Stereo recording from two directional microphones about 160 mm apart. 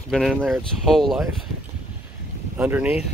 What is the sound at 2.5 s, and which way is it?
Speech, 10° right (ahead or behind).